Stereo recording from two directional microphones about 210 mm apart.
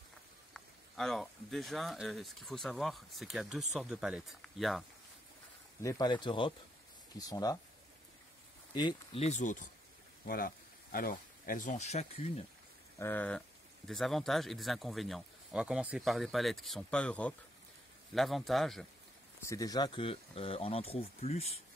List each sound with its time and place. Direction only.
0.5 s speech: centre (ahead or behind)
5.8 s speech: 15° left (ahead or behind)
8.7 s speech: 25° left (ahead or behind)
13.0 s speech: 10° left (ahead or behind)
19.4 s speech: 15° left (ahead or behind)